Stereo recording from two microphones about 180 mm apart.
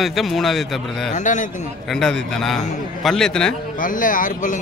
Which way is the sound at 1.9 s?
5° left (ahead or behind).